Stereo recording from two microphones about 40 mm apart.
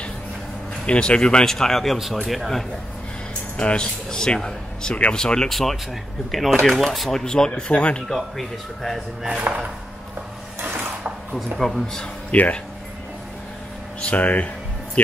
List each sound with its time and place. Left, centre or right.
0.8 s a man's voice: left
1.4 s speech: centre
3.5 s a man's voice: left
5.5 s speech: centre
7.2 s a man's voice: centre
8.4 s speech: centre
9.5 s speech: right
10.6 s mechanisms: right
11.5 s speech: centre
12.3 s speech: left
14.1 s speech: left